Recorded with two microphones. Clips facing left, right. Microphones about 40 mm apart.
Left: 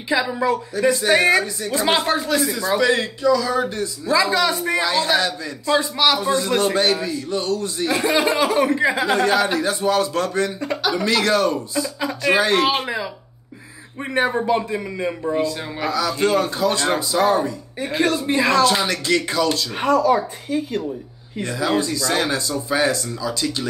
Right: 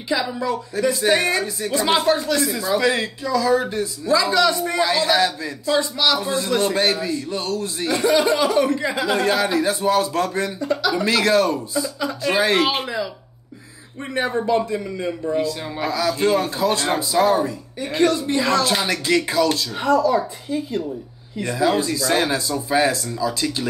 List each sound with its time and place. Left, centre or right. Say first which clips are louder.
0.1 s a woman's voice: left 3 dB; centre
4.1 s a woman's voice: right 1 dB; centre
4.8 s speech: right 2 dB; centre
5.7 s a woman's voice: left 1 dB; centre
6.8 s speech: left 1 dB; centre
7.9 s a woman's voice: right 2 dB; centre
9.1 s speech: left 1 dB; centre
12.8 s speech: even; centre
14.2 s speech: even; centre
15.4 s a woman's voice: left 1 dB; centre
19.7 s speech: even; left
21.4 s speech: right 1 dB; centre